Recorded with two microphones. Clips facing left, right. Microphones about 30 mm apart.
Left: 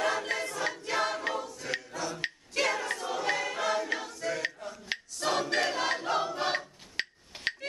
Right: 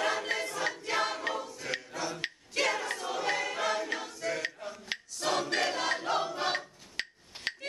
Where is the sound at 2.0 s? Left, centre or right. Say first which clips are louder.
Even; centre.